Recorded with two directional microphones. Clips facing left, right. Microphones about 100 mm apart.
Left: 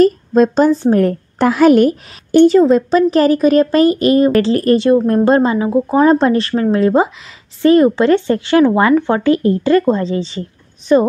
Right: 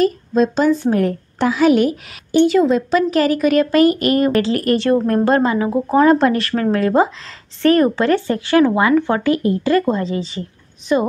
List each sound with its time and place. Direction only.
0.0 s speech: 45° left (ahead or behind)
0.7 s a woman's voice: 30° left (ahead or behind)
4.7 s speech: 20° left (ahead or behind)
8.7 s a woman's voice: 35° left (ahead or behind)